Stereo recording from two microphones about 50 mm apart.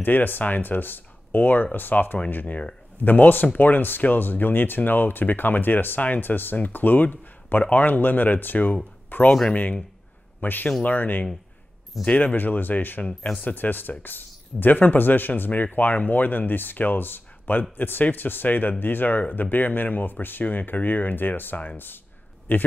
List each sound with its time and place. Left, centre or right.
0.0 s speech: left
9.3 s speech: centre
10.4 s speech: left